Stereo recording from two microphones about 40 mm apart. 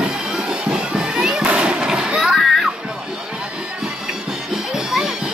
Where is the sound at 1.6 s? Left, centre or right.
Right.